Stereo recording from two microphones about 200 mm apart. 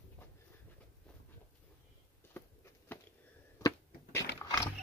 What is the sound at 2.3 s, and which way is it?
Walk, 10° left (ahead or behind).